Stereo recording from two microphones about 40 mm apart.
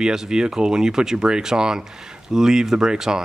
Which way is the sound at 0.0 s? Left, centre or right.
Centre.